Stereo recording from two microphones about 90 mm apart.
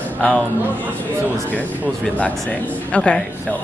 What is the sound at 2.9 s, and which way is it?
Speech, 15° left (ahead or behind).